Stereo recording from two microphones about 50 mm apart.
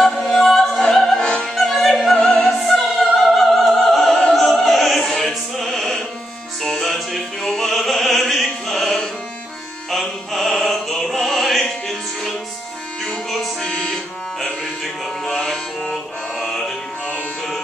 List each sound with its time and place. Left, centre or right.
0.1 s music: centre
0.9 s opera: centre
2.1 s opera: centre
2.7 s opera: centre
6.6 s music: centre
15.2 s music: centre